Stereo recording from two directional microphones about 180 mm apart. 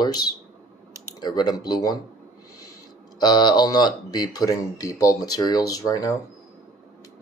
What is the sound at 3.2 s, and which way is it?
Speech, 20° left (ahead or behind).